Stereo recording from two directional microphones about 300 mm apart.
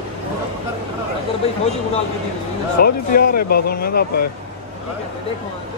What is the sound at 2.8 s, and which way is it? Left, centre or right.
Speech, left.